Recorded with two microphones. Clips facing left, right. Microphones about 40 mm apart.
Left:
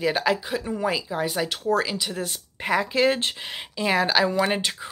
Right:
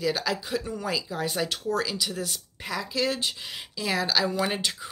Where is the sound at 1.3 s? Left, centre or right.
Centre.